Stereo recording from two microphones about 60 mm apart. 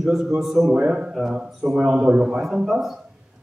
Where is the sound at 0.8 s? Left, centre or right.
Centre.